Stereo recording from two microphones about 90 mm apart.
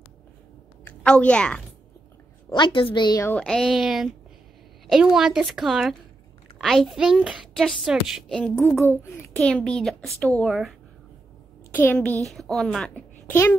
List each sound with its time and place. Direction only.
1.0 s a child's voice: 10° left (ahead or behind)
2.5 s a woman's voice: 65° left (ahead or behind)
3.3 s a woman's voice: 5° left (ahead or behind)
7.5 s a woman's voice: centre (ahead or behind)
8.3 s a child's voice: 15° left (ahead or behind)
9.4 s a child's voice: 10° left (ahead or behind)
11.7 s a child's voice: 20° left (ahead or behind)
12.2 s a woman's voice: 5° left (ahead or behind)
13.3 s a child's voice: 25° left (ahead or behind)